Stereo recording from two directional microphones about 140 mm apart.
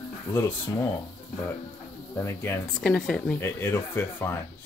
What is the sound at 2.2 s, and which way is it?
Speech, 15° left (ahead or behind).